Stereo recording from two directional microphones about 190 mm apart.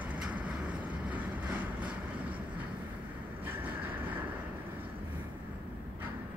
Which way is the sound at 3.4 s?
10° right (ahead or behind).